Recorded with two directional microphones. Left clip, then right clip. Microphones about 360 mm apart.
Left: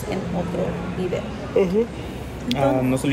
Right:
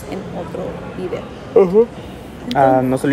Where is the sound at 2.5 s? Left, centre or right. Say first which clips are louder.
Right 8 dB; right.